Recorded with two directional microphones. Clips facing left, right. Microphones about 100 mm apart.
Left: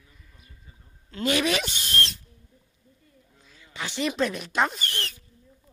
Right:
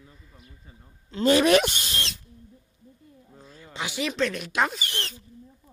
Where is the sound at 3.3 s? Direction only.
40° right (ahead or behind).